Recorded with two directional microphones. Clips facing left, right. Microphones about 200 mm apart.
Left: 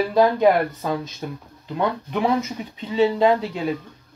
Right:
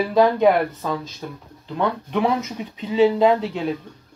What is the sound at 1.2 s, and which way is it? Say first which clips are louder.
Speech: left 2 dB; 20° left (ahead or behind).